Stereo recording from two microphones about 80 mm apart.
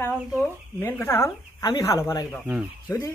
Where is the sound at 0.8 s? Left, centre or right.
Left.